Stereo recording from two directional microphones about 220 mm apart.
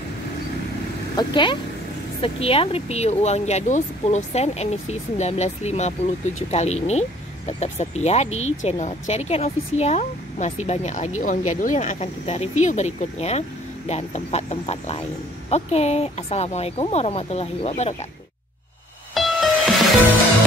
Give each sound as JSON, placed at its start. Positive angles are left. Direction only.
{"t": 1.1, "sound": "speech", "side_deg": 20}
{"t": 8.3, "sound": "speech", "side_deg": 65}
{"t": 8.6, "sound": "speech", "side_deg": 30}
{"t": 19.1, "sound": "music", "side_deg": 0}